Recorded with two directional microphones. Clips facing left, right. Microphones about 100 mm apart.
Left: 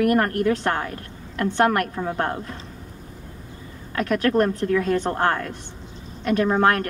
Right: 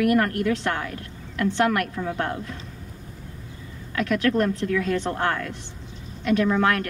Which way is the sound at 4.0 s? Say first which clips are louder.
Left 2 dB; 40° left (ahead or behind).